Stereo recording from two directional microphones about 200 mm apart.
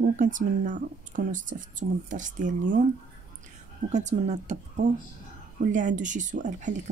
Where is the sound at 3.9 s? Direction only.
35° right (ahead or behind).